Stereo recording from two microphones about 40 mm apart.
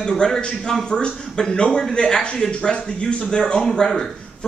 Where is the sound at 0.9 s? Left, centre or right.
Left.